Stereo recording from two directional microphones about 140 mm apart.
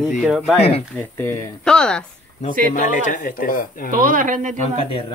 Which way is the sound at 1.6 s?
5° left (ahead or behind).